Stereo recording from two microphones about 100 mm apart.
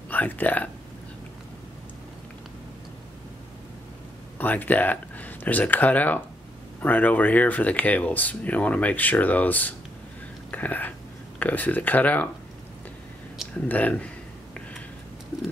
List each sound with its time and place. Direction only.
0.1 s speech: 15° left (ahead or behind)
4.4 s speech: 15° left (ahead or behind)
10.5 s a sound: 15° left (ahead or behind)
11.3 s speech: 15° left (ahead or behind)
13.7 s speech: 15° left (ahead or behind)